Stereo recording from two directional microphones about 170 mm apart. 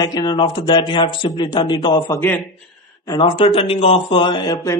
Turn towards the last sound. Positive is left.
turn(degrees=20)  # may be behind; listen again after turning